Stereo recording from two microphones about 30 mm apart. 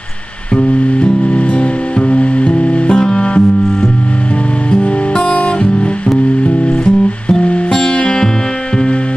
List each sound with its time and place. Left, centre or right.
0.6 s music: left
2.9 s music: left
4.6 s music: left
6.8 s music: left